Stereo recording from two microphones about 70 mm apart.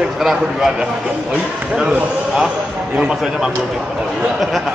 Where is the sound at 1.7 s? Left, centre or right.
Centre.